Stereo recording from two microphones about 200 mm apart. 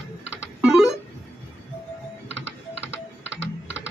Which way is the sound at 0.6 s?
5° right (ahead or behind).